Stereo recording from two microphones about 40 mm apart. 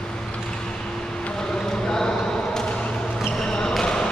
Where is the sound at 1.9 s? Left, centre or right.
Centre.